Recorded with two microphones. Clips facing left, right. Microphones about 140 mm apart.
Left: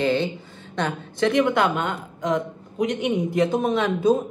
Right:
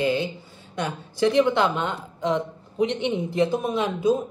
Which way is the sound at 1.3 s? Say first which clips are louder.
Even; 25° right (ahead or behind).